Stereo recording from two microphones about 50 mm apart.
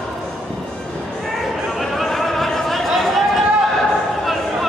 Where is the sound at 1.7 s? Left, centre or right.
Centre.